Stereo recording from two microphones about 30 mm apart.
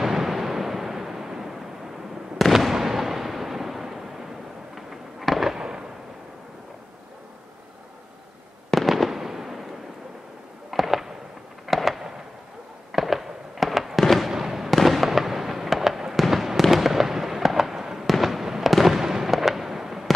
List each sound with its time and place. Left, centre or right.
0.0 s a sound: centre
2.7 s a sound: centre
5.2 s fireworks: centre
5.6 s fireworks: right
8.6 s fireworks: centre
10.7 s fireworks: centre
18.0 s fireworks: centre